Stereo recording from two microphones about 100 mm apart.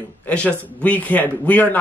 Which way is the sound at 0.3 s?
15° left (ahead or behind).